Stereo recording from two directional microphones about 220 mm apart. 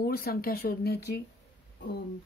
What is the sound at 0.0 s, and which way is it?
Speech, 45° left (ahead or behind).